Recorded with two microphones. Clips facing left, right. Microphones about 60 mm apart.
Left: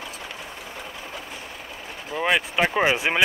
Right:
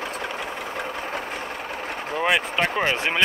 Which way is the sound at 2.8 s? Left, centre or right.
Centre.